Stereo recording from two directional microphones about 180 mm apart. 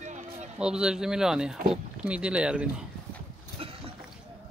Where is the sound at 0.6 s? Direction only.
5° right (ahead or behind).